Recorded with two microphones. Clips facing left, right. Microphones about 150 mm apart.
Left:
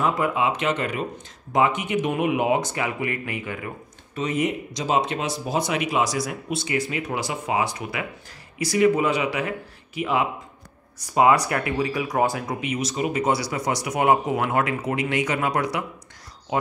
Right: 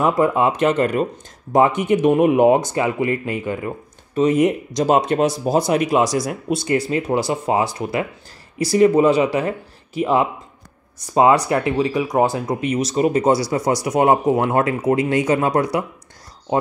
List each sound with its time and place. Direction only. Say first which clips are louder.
0.0 s speech: right 6 dB; 45° right (ahead or behind)
2.7 s speech: right 7 dB; 30° right (ahead or behind)
11.1 s speech: right 4 dB; 25° right (ahead or behind)
12.6 s speech: right 8 dB; 40° right (ahead or behind)